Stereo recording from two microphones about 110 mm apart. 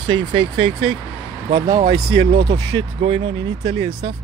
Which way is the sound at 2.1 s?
45° right (ahead or behind).